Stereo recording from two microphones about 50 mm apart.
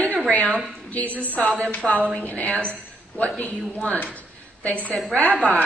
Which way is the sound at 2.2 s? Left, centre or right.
Left.